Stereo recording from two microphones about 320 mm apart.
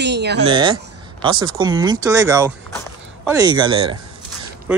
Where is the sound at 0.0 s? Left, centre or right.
Right.